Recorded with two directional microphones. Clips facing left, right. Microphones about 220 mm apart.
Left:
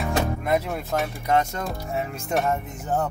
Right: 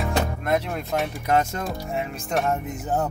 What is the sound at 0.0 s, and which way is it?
Speech, 5° left (ahead or behind).